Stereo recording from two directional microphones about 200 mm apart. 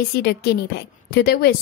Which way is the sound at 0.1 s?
55° left (ahead or behind).